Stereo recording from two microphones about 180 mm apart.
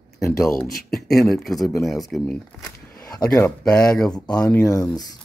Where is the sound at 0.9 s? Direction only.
Centre (ahead or behind).